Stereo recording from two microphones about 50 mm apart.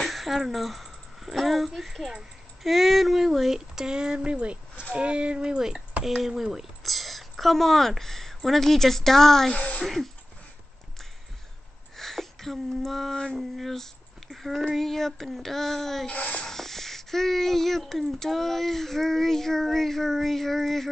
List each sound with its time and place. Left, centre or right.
0.0 s speech: centre
9.5 s speech: left
12.0 s speech: centre
14.3 s a sound: centre
14.7 s speech: centre
16.1 s speech: left
16.4 s speech: centre